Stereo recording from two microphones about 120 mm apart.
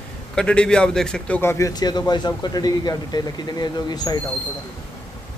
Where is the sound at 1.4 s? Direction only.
25° left (ahead or behind).